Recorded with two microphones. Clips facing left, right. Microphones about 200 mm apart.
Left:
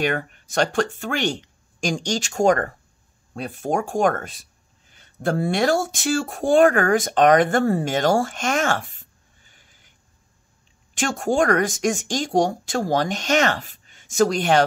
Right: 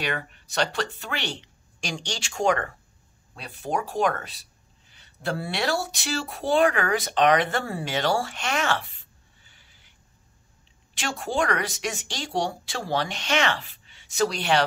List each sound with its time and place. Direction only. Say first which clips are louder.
0.0 s speech: left 7 dB; 45° left (ahead or behind)
11.0 s speech: left 6 dB; 45° left (ahead or behind)